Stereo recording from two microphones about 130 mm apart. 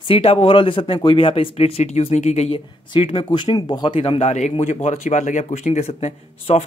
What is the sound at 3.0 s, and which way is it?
Speech, 40° left (ahead or behind).